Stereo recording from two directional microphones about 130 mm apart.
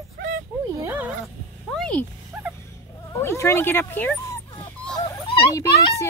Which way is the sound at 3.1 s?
20° left (ahead or behind).